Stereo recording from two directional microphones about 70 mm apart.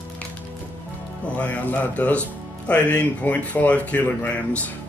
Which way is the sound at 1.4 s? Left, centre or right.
Left.